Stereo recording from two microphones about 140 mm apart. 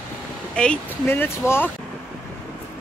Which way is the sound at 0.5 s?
5° left (ahead or behind).